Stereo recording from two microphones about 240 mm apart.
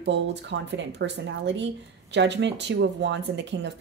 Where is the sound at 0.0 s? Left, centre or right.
Right.